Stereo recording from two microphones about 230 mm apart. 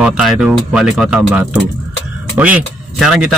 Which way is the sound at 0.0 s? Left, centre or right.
Centre.